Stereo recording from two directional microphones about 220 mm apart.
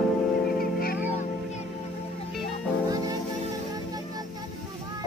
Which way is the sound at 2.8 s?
15° right (ahead or behind).